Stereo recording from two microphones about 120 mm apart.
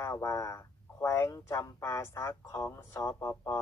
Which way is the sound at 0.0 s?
25° left (ahead or behind).